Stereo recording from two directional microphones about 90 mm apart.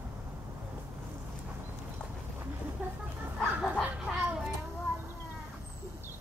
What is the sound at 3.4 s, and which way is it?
Dog, centre (ahead or behind).